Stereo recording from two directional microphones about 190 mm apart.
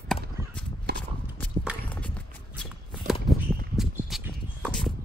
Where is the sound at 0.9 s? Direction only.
60° right (ahead or behind).